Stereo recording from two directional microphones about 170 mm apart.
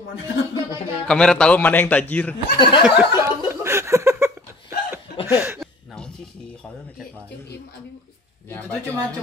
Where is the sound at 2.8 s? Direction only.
10° right (ahead or behind).